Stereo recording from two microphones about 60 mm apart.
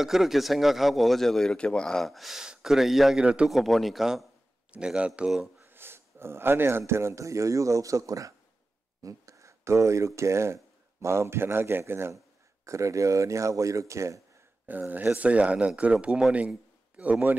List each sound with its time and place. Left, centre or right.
0.0 s a man's voice: centre
4.6 s speech: centre
5.7 s a sound: right
6.9 s speech: right
12.6 s speech: right
14.7 s speech: right
16.3 s a sound: right